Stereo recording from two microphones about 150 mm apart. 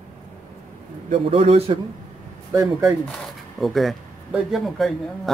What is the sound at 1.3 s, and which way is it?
Speech, 40° right (ahead or behind).